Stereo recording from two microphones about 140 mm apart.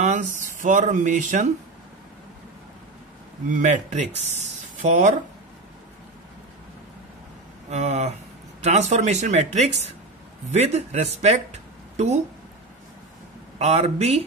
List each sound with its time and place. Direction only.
0.0 s speech: 60° right (ahead or behind)
3.4 s speech: 65° right (ahead or behind)
7.7 s speech: 50° right (ahead or behind)
13.6 s speech: 50° right (ahead or behind)